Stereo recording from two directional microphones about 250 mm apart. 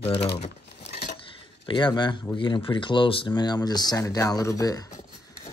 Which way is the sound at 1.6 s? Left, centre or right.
Centre.